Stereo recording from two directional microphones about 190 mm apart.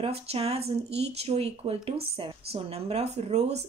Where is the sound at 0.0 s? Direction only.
35° right (ahead or behind).